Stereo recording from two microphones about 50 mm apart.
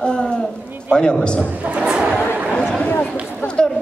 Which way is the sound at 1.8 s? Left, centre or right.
Centre.